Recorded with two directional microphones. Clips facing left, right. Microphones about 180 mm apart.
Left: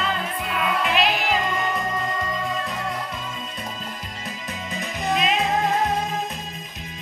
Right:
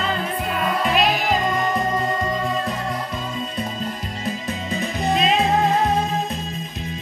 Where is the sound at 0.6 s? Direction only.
40° right (ahead or behind).